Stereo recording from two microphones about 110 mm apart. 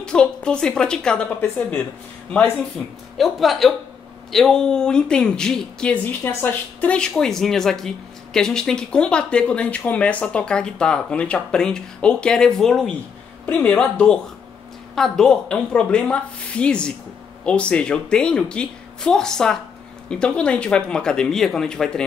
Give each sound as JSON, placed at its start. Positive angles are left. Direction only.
{"t": 0.0, "sound": "a woman's voice", "side_deg": 10}
{"t": 1.6, "sound": "speech", "side_deg": 20}
{"t": 3.2, "sound": "a woman's voice", "side_deg": 0}